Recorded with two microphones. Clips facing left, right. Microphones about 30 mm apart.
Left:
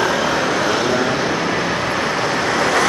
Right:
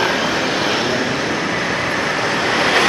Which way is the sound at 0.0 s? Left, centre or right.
Right.